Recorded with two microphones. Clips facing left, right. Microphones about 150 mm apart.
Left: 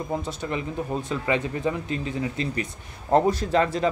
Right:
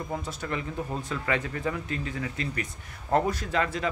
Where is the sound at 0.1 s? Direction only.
25° left (ahead or behind).